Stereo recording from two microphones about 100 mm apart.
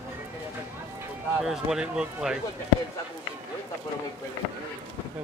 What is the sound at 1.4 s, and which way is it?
Speech, 5° right (ahead or behind).